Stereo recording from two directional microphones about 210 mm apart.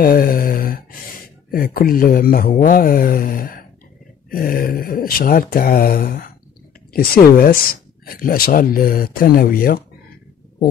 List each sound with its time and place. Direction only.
0.0 s speech: 45° left (ahead or behind)